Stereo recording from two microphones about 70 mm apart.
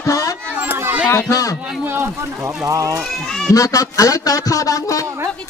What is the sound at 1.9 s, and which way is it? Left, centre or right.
Speech, right.